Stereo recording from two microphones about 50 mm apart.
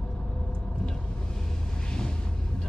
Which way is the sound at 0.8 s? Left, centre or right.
Centre.